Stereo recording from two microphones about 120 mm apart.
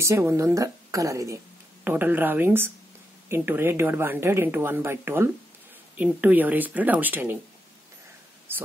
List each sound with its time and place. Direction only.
0.0 s speech: 20° right (ahead or behind)
1.9 s speech: 15° right (ahead or behind)
8.5 s speech: 20° right (ahead or behind)